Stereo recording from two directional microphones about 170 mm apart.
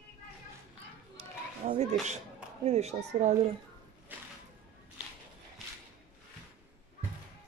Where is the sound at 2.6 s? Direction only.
40° right (ahead or behind).